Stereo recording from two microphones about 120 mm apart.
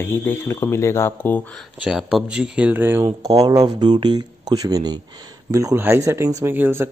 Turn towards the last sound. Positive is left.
turn(degrees=-20)  # may be behind; listen again after turning